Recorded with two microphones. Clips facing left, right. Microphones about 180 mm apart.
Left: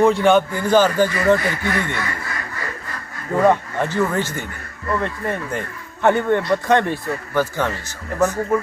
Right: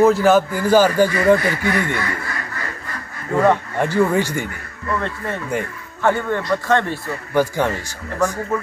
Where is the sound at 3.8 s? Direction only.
10° right (ahead or behind).